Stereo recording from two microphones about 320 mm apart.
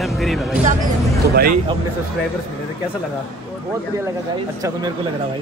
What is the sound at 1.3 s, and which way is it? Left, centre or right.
Speech, right.